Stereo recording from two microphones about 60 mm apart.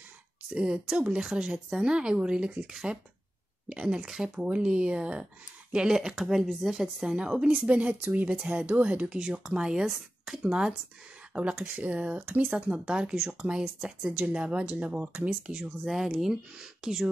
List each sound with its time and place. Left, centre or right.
0.5 s speech: centre
11.6 s speech: right
11.9 s speech: right
15.8 s speech: centre